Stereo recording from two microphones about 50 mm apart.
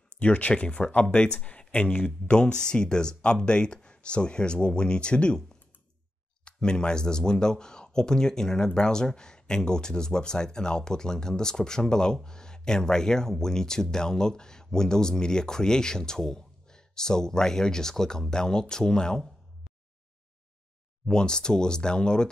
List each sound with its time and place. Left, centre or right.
0.2 s speech: left
21.1 s speech: centre